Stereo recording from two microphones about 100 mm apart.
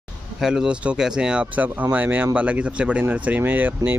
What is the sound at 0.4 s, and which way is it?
Speech, 5° right (ahead or behind).